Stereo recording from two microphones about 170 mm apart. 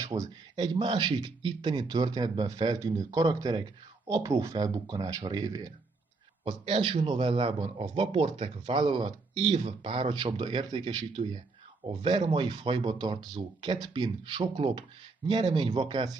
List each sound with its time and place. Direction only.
0.0 s speech: 20° right (ahead or behind)
6.4 s a man's voice: 35° right (ahead or behind)